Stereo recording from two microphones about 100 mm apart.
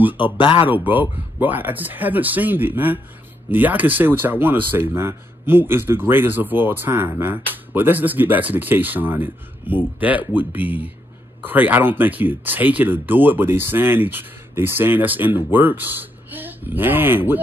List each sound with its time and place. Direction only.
0.4 s speech: 55° left (ahead or behind)
0.7 s speech: 15° right (ahead or behind)